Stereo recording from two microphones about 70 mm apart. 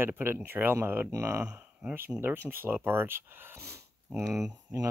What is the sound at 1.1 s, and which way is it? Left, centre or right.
Speech, right.